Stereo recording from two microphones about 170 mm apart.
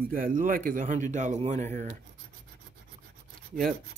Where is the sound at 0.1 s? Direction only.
55° right (ahead or behind).